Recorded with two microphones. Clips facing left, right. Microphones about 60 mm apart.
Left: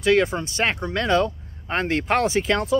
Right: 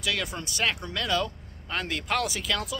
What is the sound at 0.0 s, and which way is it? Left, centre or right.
Speech, left.